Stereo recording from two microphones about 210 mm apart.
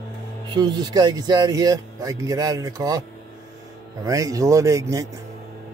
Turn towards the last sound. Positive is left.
turn(degrees=-15)  # may be behind; listen again after turning